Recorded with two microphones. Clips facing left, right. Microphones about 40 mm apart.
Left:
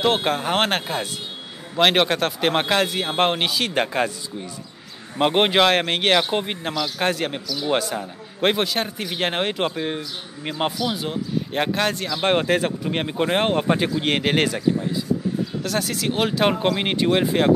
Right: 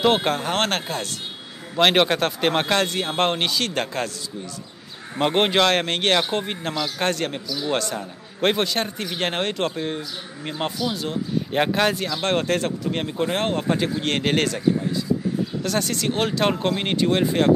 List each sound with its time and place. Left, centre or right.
0.0 s speech: centre
11.5 s speech: centre
12.2 s speech: centre
15.6 s speech: centre